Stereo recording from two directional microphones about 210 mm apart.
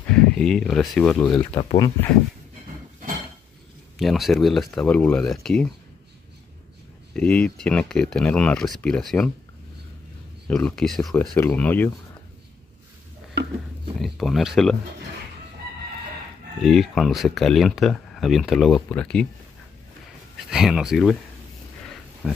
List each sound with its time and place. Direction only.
0.1 s speech: 5° left (ahead or behind)
1.6 s speech: 25° left (ahead or behind)
4.0 s speech: centre (ahead or behind)
7.2 s speech: 5° left (ahead or behind)
10.5 s speech: centre (ahead or behind)
13.9 s speech: centre (ahead or behind)
16.6 s speech: centre (ahead or behind)
20.4 s speech: centre (ahead or behind)
22.2 s speech: centre (ahead or behind)